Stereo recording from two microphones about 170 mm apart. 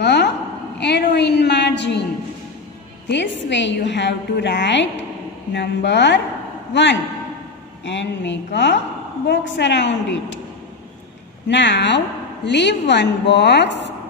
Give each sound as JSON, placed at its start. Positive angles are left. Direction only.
{"t": 0.0, "sound": "a sound", "side_deg": 80}
{"t": 0.7, "sound": "a woman's voice", "side_deg": 80}
{"t": 3.1, "sound": "a woman's voice", "side_deg": 90}
{"t": 11.4, "sound": "a woman's voice", "side_deg": 90}